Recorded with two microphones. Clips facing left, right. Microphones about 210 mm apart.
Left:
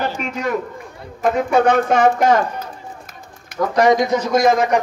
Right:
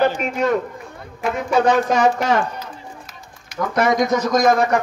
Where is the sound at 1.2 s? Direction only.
55° left (ahead or behind).